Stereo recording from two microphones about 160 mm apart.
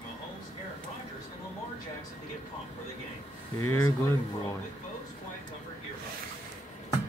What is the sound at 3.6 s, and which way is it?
Speech, 15° left (ahead or behind).